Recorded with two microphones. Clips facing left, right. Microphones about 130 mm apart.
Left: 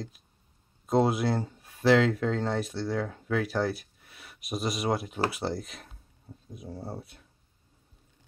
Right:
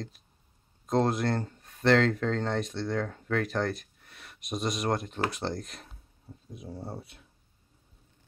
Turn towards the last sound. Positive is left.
turn(degrees=0)  # may be behind; listen again after turning